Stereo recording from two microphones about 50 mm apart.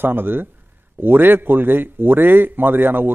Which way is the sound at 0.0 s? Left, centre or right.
Right.